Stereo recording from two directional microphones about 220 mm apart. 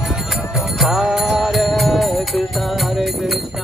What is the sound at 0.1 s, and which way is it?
Jingle bell, centre (ahead or behind).